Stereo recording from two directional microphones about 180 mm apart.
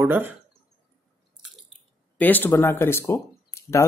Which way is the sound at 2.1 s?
10° left (ahead or behind).